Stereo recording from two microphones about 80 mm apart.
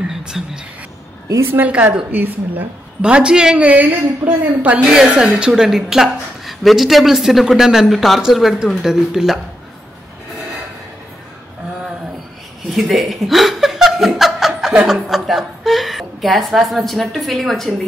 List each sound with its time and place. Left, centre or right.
0.3 s a woman's voice: centre
1.4 s a woman's voice: right
4.8 s a woman's voice: centre
12.7 s a woman's voice: centre